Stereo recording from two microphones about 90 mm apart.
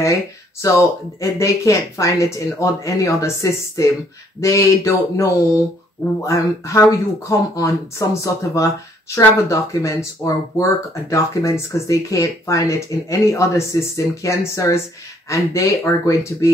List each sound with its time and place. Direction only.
0.0 s speech: 35° left (ahead or behind)